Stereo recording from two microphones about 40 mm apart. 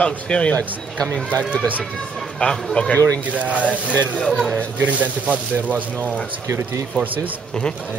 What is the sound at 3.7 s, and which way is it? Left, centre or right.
Speech, left.